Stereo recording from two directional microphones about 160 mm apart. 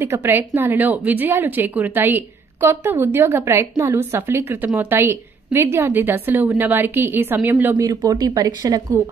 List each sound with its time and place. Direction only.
0.0 s a woman's voice: 15° right (ahead or behind)
7.7 s speech: 20° right (ahead or behind)